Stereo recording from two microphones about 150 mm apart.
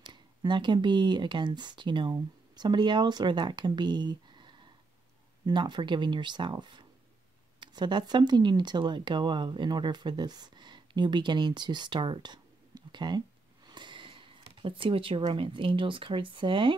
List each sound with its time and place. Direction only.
0.0 s speech: 30° right (ahead or behind)